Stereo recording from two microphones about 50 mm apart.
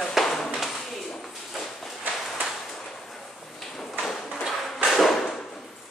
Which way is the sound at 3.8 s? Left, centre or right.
Centre.